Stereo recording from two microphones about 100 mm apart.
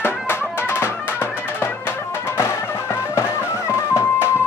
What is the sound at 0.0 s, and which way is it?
Music, 25° left (ahead or behind).